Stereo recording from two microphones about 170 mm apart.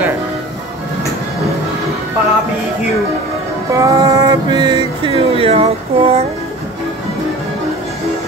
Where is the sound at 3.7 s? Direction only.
20° right (ahead or behind); by 6.2 s 35° right (ahead or behind).